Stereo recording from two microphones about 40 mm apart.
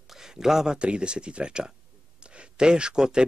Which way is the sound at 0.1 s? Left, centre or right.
Centre.